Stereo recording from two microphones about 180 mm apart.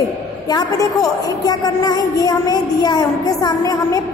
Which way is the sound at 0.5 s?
20° left (ahead or behind).